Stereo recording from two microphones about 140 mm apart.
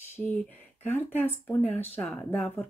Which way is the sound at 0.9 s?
15° left (ahead or behind).